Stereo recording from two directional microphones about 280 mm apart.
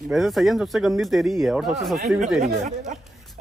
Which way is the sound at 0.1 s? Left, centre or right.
Centre.